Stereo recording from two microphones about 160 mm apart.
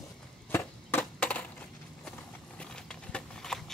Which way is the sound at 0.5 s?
15° left (ahead or behind).